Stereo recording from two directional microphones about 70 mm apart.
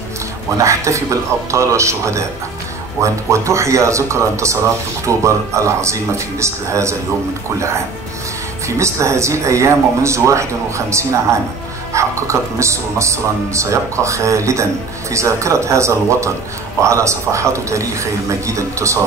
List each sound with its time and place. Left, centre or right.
0.6 s speech: right
8.6 s speech: right